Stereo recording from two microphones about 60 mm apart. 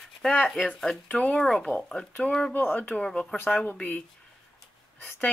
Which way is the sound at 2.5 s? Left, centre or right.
Left.